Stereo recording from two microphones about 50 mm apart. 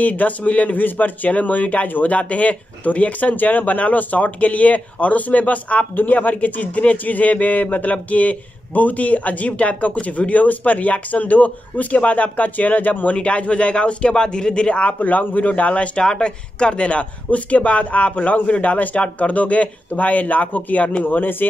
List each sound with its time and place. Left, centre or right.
0.0 s a man's voice: left